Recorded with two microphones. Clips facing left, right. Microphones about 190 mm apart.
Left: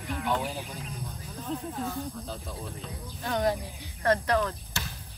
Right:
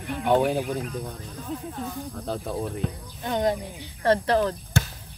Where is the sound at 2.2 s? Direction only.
60° right (ahead or behind).